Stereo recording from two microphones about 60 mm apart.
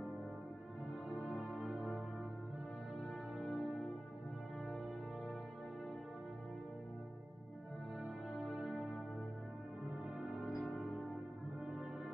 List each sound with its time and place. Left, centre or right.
1.1 s music: centre
3.3 s music: centre
8.3 s music: centre